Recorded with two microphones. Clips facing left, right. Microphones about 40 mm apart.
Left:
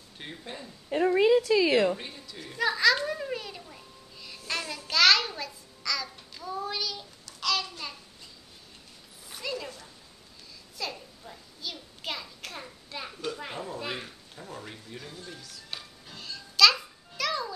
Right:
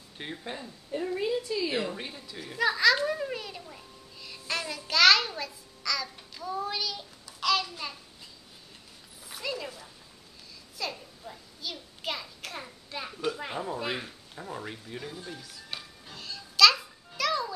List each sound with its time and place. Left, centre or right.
0.2 s speech: centre
0.8 s a woman's voice: left
2.0 s a child's voice: centre
7.2 s a sound: centre
9.3 s a sound: centre
17.2 s music: centre